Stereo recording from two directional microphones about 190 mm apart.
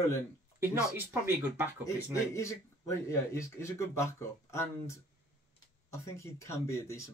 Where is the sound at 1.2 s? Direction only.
10° right (ahead or behind).